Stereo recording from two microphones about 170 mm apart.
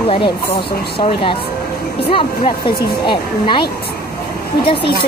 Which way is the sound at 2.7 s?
65° left (ahead or behind).